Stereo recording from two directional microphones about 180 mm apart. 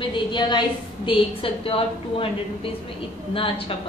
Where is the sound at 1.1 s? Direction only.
30° left (ahead or behind).